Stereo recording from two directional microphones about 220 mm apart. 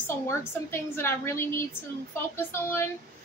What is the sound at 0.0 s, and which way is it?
A woman's voice, 10° left (ahead or behind).